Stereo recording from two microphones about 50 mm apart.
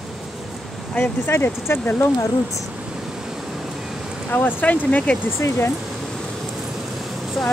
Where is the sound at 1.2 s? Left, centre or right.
Left.